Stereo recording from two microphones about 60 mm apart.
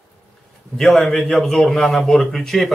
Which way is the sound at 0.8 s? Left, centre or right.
Centre.